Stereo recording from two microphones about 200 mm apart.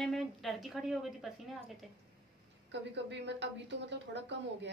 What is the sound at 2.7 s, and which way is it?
A woman's voice, 60° right (ahead or behind).